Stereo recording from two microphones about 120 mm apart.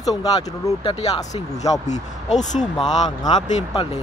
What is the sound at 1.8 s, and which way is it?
Speech, 80° left.